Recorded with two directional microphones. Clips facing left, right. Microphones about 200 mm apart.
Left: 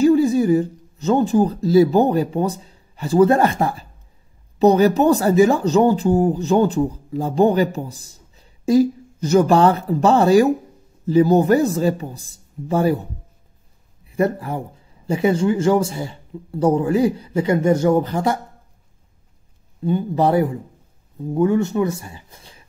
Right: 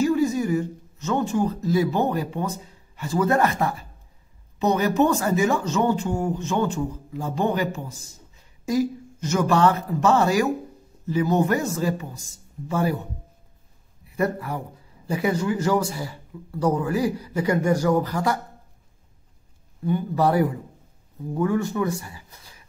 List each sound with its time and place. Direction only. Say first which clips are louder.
0.0 s speech: left 6 dB; 30° left (ahead or behind)
14.0 s a man's voice: left 5 dB; 30° left (ahead or behind)
19.8 s a man's voice: left 3 dB; 25° left (ahead or behind)